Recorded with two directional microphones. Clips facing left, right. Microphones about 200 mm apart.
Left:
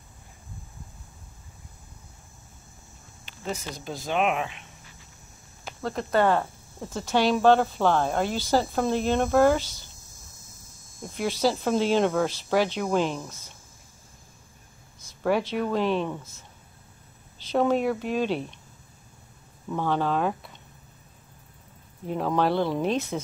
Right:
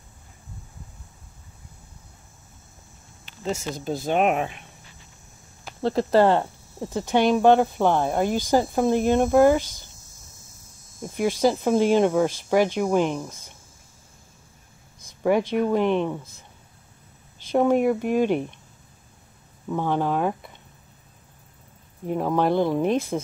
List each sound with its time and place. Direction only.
4.1 s speech: 45° right (ahead or behind)
5.8 s speech: 30° right (ahead or behind); by 9.8 s 15° right (ahead or behind)
11.1 s speech: 15° right (ahead or behind)
15.2 s speech: 15° right (ahead or behind)
17.5 s speech: 15° right (ahead or behind)
19.7 s speech: 15° right (ahead or behind)
22.0 s speech: 15° right (ahead or behind)